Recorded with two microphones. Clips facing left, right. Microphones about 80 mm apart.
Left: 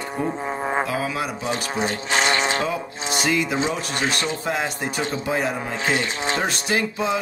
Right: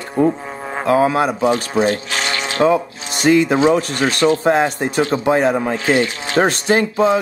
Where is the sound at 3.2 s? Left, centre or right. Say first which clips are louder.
Right 10 dB; right.